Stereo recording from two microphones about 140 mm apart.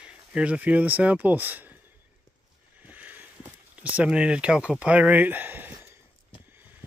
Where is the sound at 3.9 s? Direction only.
10° right (ahead or behind).